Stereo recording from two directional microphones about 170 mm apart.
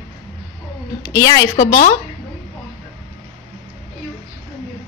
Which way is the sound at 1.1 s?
20° left (ahead or behind).